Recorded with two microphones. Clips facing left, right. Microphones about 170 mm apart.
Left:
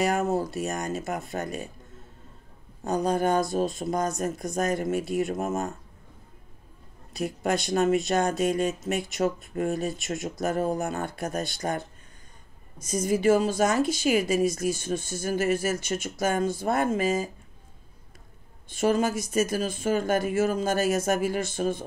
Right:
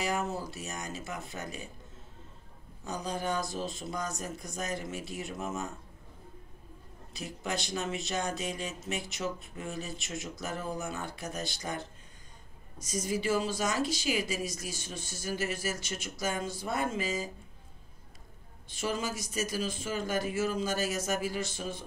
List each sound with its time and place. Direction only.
0.0 s speech: 50° left (ahead or behind)
2.8 s speech: 50° left (ahead or behind)
7.2 s speech: 50° left (ahead or behind)
18.7 s speech: 50° left (ahead or behind)